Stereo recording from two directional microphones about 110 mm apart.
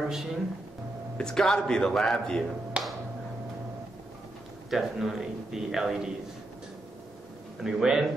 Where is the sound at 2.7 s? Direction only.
10° right (ahead or behind).